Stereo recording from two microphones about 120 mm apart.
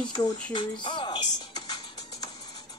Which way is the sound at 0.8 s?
40° left (ahead or behind).